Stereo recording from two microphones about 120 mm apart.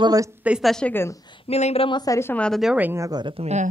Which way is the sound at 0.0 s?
30° right (ahead or behind).